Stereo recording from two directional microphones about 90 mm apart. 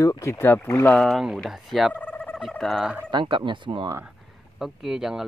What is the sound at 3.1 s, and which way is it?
Speech, 65° right (ahead or behind).